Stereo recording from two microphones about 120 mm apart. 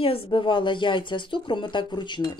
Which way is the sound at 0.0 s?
50° left (ahead or behind).